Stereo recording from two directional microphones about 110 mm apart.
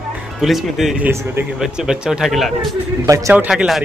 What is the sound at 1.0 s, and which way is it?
Speech, 20° right (ahead or behind).